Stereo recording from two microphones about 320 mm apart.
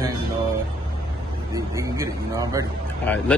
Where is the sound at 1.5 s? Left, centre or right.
Centre.